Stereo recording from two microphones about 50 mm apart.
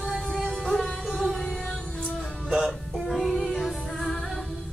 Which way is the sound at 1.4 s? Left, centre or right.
Centre.